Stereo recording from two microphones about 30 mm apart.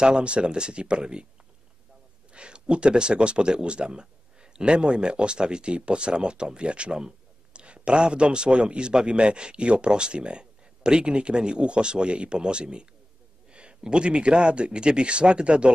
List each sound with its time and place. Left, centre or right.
0.2 s a man's voice: right
2.3 s a sound: right
2.7 s a man's voice: right